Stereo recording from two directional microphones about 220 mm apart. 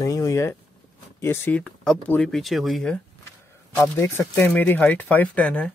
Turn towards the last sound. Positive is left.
turn(degrees=5)  # may be behind; listen again after turning